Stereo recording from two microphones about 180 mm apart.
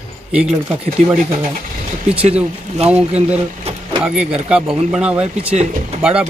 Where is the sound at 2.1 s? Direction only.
35° right (ahead or behind).